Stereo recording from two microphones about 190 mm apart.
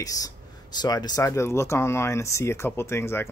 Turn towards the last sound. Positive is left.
turn(degrees=15)  # may be behind; listen again after turning